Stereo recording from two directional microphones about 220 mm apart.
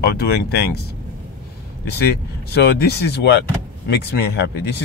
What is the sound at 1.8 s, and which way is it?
Speech, 45° left (ahead or behind).